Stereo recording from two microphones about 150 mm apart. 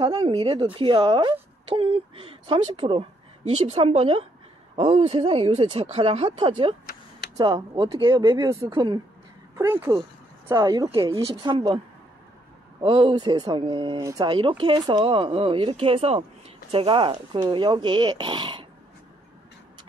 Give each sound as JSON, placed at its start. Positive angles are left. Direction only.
{"t": 0.0, "sound": "speech", "side_deg": -30}
{"t": 8.4, "sound": "speech", "side_deg": -20}
{"t": 8.6, "sound": "speech", "side_deg": -30}
{"t": 9.6, "sound": "speech", "side_deg": -20}
{"t": 11.0, "sound": "speech", "side_deg": -40}
{"t": 12.8, "sound": "speech", "side_deg": -35}